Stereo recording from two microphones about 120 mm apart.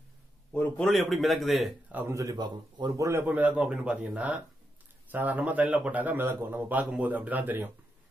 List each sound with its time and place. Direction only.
0.5 s a sound: 15° left (ahead or behind)
0.8 s speech: centre (ahead or behind)
1.9 s speech: 20° right (ahead or behind); by 3.1 s 35° right (ahead or behind)
3.1 s a man's voice: 15° right (ahead or behind)